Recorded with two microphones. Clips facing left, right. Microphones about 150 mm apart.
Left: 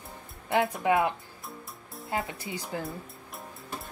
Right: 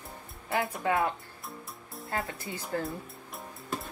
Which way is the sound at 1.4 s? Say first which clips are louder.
Even; centre (ahead or behind).